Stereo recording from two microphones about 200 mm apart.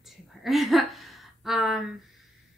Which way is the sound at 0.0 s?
Centre (ahead or behind).